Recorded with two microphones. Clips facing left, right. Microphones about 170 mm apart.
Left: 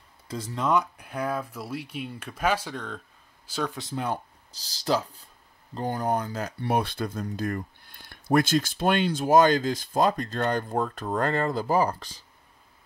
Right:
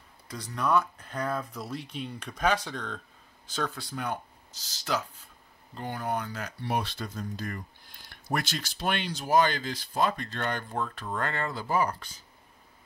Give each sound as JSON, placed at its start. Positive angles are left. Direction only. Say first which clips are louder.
{"t": 0.3, "sound": "a man's voice", "louder": "left 2 dB", "side_deg": 25}
{"t": 3.7, "sound": "speech", "louder": "left 4 dB", "side_deg": 25}
{"t": 6.6, "sound": "speech", "louder": "left 5 dB", "side_deg": 55}